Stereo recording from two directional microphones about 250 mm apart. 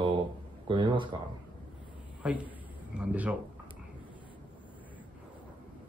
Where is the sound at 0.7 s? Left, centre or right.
Centre.